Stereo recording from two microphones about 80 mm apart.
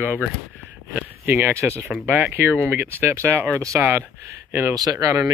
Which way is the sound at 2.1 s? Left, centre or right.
Right.